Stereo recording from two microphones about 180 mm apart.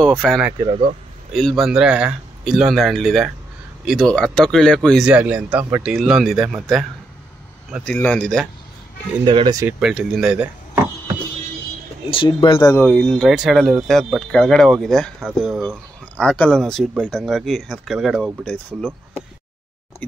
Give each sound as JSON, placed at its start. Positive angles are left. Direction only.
{"t": 0.2, "sound": "speech", "side_deg": 0}
{"t": 0.7, "sound": "speech", "side_deg": -30}
{"t": 1.3, "sound": "speech", "side_deg": 0}
{"t": 9.2, "sound": "speech", "side_deg": -25}
{"t": 9.6, "sound": "speech", "side_deg": -5}
{"t": 12.1, "sound": "speech", "side_deg": 25}
{"t": 12.5, "sound": "speech", "side_deg": 10}
{"t": 20.0, "sound": "a sound", "side_deg": 10}